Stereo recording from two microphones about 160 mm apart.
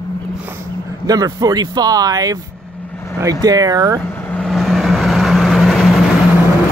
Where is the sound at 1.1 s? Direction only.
25° right (ahead or behind).